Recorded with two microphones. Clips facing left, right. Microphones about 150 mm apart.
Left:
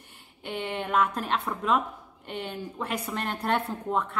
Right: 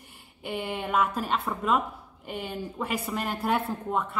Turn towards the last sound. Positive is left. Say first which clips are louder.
# even
turn(degrees=-5)  # may be behind; listen again after turning